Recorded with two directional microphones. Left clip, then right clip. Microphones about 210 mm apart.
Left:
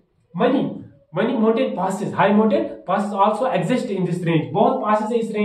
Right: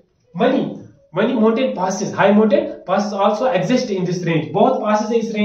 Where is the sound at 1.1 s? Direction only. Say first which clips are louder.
Right 3 dB; 5° right (ahead or behind).